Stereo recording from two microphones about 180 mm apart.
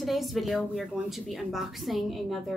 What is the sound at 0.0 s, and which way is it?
A woman's voice, centre (ahead or behind).